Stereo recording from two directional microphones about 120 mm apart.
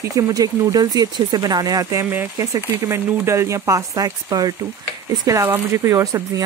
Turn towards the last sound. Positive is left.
turn(degrees=-30)  # may be behind; listen again after turning